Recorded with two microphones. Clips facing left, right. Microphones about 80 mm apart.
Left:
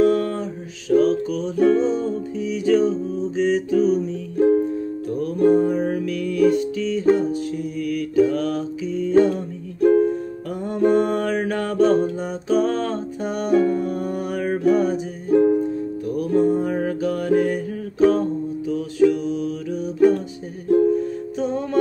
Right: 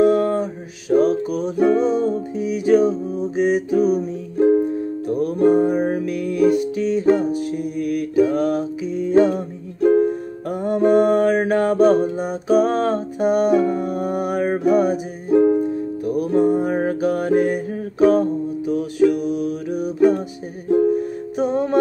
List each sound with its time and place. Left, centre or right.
0.0 s music: right
11.1 s mantra: right
11.5 s music: right
13.7 s music: right
14.3 s music: right
14.6 s music: centre
19.2 s mantra: right
20.6 s music: centre